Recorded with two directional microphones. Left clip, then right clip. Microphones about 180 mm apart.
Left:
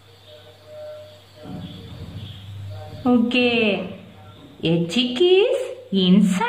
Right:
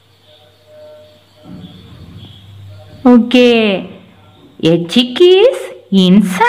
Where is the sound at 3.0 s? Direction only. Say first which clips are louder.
Right 11 dB; 45° right (ahead or behind).